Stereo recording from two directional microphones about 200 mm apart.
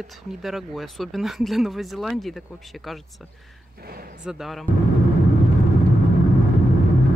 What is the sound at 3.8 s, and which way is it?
Speech, 50° right (ahead or behind).